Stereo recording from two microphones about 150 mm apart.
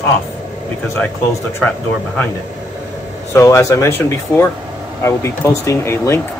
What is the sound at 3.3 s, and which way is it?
Speech, 20° left (ahead or behind).